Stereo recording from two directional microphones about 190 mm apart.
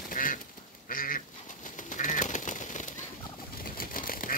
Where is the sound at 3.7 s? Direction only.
50° left (ahead or behind).